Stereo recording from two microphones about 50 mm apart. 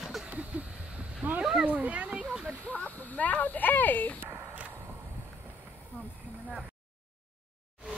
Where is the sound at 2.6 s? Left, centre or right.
Left.